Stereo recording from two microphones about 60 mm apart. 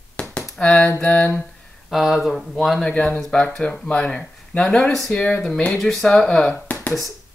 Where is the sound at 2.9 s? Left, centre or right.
Left.